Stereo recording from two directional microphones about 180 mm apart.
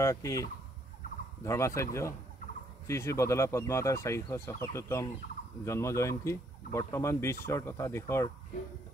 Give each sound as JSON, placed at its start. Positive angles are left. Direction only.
{"t": 0.0, "sound": "speech", "side_deg": 15}
{"t": 2.9, "sound": "speech", "side_deg": 15}